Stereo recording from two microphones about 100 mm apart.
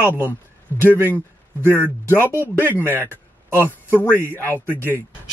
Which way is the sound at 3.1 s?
25° right (ahead or behind).